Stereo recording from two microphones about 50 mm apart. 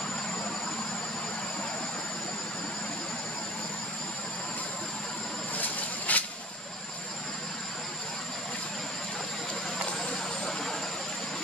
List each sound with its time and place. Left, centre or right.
5.6 s vehicle: left